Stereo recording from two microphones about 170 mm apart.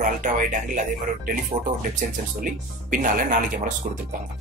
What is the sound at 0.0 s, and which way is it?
Speech, 50° right (ahead or behind).